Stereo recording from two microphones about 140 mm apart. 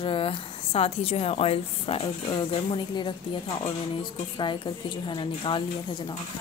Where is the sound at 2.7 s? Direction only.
35° left (ahead or behind).